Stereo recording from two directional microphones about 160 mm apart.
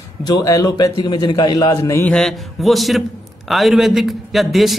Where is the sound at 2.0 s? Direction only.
5° left (ahead or behind).